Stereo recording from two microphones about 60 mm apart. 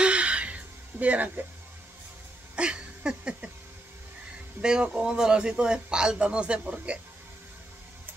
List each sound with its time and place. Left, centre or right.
0.0 s music: centre
2.5 s a sound: centre
4.6 s speech: centre